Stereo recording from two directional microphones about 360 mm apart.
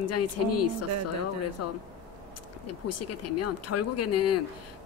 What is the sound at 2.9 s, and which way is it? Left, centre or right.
Speech, left.